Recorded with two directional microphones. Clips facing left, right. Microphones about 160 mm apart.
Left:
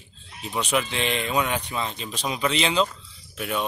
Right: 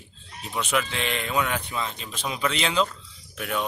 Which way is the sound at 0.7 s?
15° left (ahead or behind).